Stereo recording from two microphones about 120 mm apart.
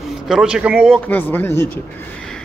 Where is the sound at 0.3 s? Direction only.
5° right (ahead or behind).